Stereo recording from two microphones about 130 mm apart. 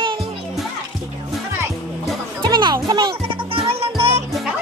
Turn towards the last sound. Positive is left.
turn(degrees=-50)  # may be behind; listen again after turning